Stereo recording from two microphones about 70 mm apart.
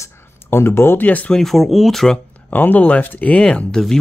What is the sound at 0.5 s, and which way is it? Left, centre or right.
Speech, left.